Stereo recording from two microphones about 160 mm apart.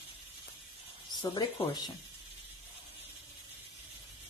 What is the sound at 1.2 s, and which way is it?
Speech, 30° left (ahead or behind).